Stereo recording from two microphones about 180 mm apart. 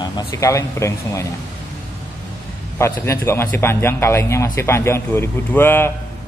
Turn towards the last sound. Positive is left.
turn(degrees=10)  # may be behind; listen again after turning